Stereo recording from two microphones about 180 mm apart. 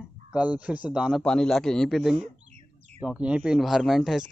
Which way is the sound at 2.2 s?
35° right (ahead or behind).